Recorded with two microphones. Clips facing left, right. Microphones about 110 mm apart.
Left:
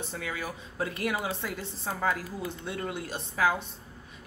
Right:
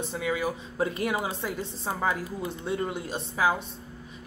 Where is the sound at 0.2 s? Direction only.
15° right (ahead or behind).